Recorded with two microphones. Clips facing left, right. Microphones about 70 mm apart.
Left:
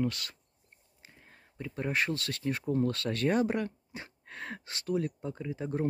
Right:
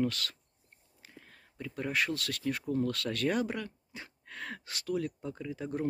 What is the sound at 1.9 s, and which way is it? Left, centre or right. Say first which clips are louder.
Speech: left 1 dB; left.